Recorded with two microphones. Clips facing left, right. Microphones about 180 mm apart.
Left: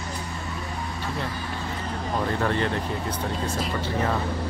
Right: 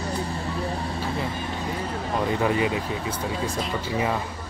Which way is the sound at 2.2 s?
10° right (ahead or behind).